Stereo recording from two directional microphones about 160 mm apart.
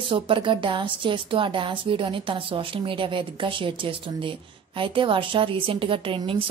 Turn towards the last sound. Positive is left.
turn(degrees=-35)  # may be behind; listen again after turning